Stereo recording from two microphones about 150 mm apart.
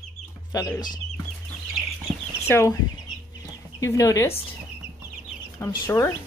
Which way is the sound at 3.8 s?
20° left (ahead or behind).